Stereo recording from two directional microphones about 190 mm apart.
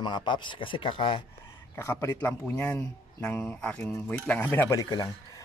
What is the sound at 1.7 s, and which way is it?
A man's voice, 15° left (ahead or behind).